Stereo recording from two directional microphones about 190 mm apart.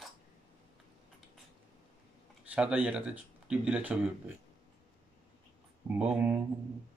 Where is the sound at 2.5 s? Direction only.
5° right (ahead or behind).